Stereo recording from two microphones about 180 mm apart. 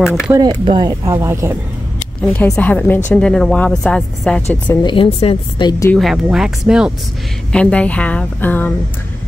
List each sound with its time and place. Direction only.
0.0 s a woman's voice: centre (ahead or behind)
0.3 s speech: 25° right (ahead or behind)
2.2 s a woman's voice: 5° left (ahead or behind)
4.8 s speech: 30° left (ahead or behind)
5.9 s a woman's voice: centre (ahead or behind)